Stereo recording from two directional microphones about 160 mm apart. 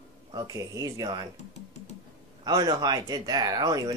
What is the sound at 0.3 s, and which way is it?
Speech, 20° right (ahead or behind).